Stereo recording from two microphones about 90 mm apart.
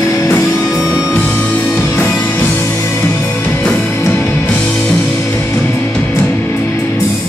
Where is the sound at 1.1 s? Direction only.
15° left (ahead or behind).